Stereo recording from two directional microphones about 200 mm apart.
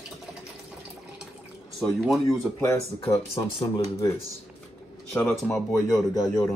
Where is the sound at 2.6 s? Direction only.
15° left (ahead or behind).